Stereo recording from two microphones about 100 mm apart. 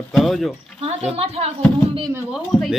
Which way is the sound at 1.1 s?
85° right.